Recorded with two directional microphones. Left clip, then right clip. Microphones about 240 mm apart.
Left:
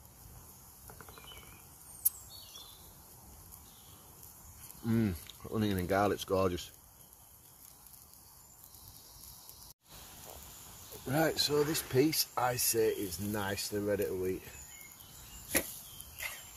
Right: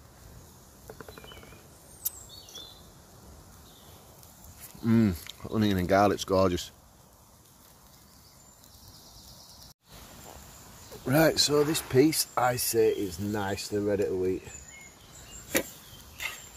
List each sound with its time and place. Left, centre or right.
4.8 s speech: right
11.1 s speech: right
11.6 s speech: right